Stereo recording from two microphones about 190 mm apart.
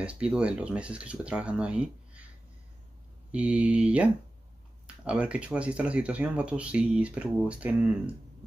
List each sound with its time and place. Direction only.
0.0 s speech: 5° right (ahead or behind)
3.3 s speech: 5° right (ahead or behind)